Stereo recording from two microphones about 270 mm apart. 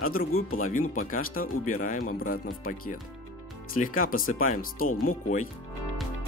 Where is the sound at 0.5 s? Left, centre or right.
Left.